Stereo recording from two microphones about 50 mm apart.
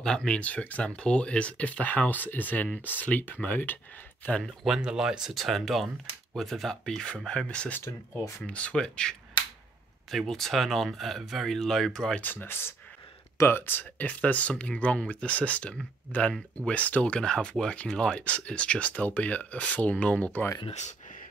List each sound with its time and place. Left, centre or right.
0.0 s speech: centre; by 3.8 s left
4.6 s speech: centre
5.3 s speech: centre
10.1 s speech: centre
12.2 s speech: left
13.5 s speech: left
13.9 s speech: left
17.2 s speech: centre